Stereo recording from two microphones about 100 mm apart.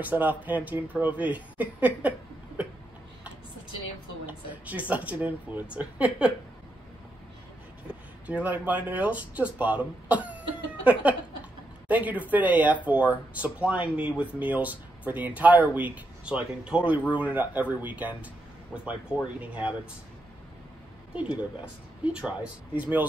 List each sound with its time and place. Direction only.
0.0 s speech: 20° right (ahead or behind)
4.3 s speech: 15° right (ahead or behind)
7.9 s speech: 15° right (ahead or behind)
22.0 s speech: 10° right (ahead or behind)